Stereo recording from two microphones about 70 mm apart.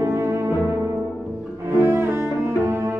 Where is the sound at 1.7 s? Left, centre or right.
Right.